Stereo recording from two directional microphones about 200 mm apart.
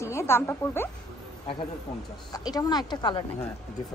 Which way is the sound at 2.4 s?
20° left (ahead or behind).